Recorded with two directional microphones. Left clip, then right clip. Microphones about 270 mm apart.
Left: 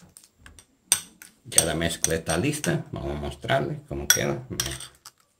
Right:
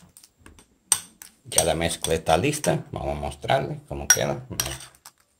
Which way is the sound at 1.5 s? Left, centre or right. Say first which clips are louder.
Right 2 dB; right.